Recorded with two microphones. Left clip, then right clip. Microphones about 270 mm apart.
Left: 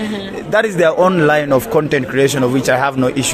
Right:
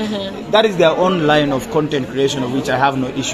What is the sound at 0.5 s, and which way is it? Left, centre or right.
A man's voice, left.